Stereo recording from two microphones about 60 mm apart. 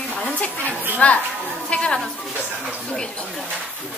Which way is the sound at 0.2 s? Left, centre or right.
Left.